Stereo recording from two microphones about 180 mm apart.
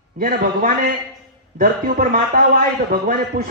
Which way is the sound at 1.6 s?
55° right (ahead or behind).